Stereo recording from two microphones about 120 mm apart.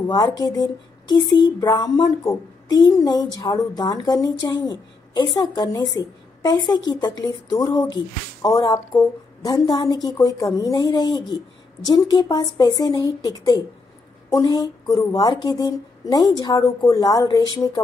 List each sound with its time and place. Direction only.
0.0 s a woman's voice: 35° left (ahead or behind)
10.0 s a woman's voice: 25° left (ahead or behind)